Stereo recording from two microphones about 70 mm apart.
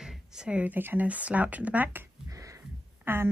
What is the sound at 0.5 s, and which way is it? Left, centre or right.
Speech, right.